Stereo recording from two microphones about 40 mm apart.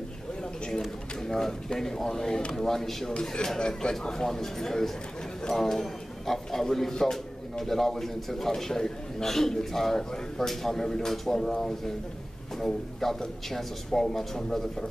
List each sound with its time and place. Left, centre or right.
0.7 s speech: centre
3.1 s a man's voice: left